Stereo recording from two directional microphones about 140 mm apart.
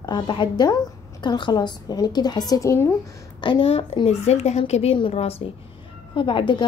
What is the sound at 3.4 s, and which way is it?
A woman's voice, 40° left (ahead or behind).